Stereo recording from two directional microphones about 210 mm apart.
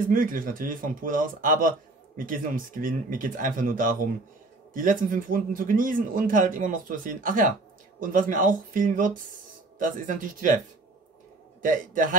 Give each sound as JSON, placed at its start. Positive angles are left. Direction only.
{"t": 0.1, "sound": "a man's voice", "side_deg": -40}
{"t": 11.6, "sound": "a man's voice", "side_deg": -40}